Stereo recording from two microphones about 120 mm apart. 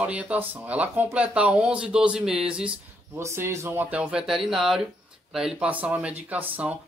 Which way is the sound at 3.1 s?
20° right (ahead or behind).